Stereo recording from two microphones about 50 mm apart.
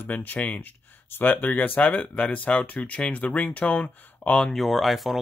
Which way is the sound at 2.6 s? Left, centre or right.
Left.